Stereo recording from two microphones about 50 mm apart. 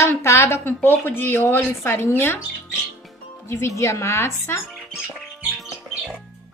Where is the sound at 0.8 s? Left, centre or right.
Left.